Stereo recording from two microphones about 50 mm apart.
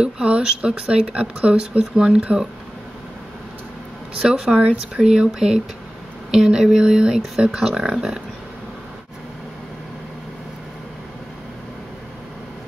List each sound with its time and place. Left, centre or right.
0.0 s speech: right
4.2 s speech: centre
4.5 s speech: right
5.0 s speech: centre